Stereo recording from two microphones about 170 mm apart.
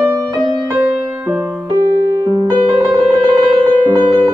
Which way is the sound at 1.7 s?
20° right (ahead or behind).